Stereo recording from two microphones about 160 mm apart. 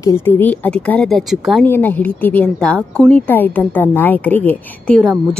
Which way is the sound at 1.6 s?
10° left (ahead or behind).